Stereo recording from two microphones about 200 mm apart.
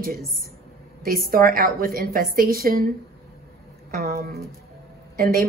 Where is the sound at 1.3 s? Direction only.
45° right (ahead or behind).